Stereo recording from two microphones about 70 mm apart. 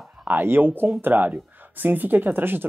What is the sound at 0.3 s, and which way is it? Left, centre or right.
Speech, right.